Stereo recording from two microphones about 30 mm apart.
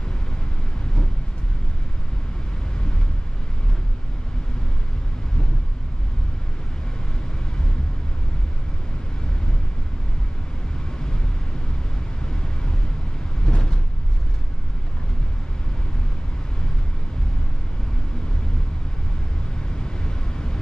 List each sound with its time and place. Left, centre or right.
13.5 s vehicle: left
19.8 s vehicle: left